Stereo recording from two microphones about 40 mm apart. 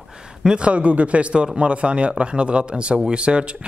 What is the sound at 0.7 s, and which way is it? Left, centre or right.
Speech, right.